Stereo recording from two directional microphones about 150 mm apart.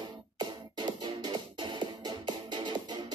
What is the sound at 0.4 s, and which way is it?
Music, 30° right (ahead or behind).